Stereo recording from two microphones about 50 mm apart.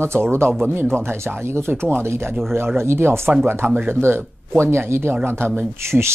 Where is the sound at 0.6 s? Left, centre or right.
Right.